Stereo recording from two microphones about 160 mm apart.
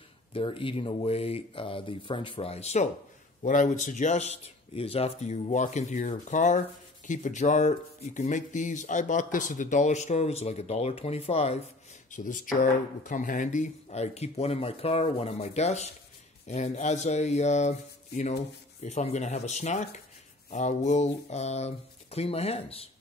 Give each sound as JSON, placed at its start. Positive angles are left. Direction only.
{"t": 0.3, "sound": "speech", "side_deg": 35}
{"t": 12.1, "sound": "speech", "side_deg": 55}